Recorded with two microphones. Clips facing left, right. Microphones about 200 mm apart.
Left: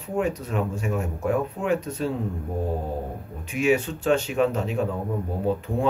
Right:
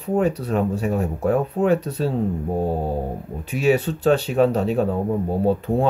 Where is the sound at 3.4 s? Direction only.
35° right (ahead or behind).